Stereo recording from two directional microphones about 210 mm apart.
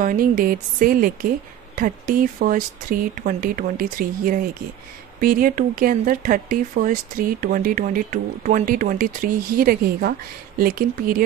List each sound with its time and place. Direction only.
0.0 s speech: 40° right (ahead or behind)